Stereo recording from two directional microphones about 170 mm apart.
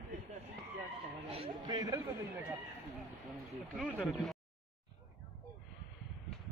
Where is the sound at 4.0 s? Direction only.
Centre (ahead or behind).